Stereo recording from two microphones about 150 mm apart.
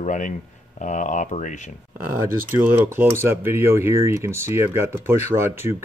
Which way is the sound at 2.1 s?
15° right (ahead or behind).